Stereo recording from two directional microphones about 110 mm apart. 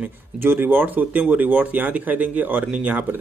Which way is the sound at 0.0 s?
20° right (ahead or behind).